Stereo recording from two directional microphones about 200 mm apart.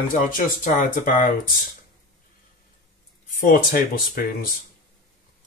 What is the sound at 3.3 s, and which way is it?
Speech, 45° left (ahead or behind).